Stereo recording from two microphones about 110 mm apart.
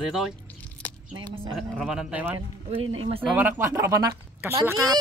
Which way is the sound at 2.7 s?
60° right (ahead or behind).